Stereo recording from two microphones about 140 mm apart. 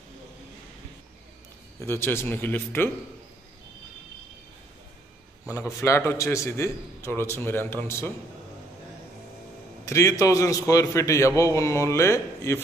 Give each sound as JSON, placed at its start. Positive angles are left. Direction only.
{"t": 1.8, "sound": "speech", "side_deg": 20}
{"t": 5.5, "sound": "a man's voice", "side_deg": 20}
{"t": 9.8, "sound": "a man's voice", "side_deg": 20}